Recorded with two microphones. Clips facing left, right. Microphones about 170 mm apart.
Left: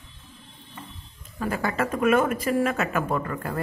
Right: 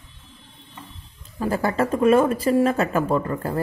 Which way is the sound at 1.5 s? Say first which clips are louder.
Right 5 dB; 35° right (ahead or behind).